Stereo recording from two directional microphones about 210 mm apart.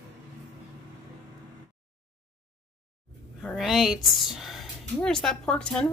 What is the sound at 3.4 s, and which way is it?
A woman's voice, centre (ahead or behind).